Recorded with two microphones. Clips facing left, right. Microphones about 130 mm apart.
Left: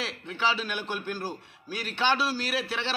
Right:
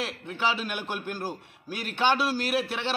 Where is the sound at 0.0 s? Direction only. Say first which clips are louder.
Right 1 dB; 10° right (ahead or behind).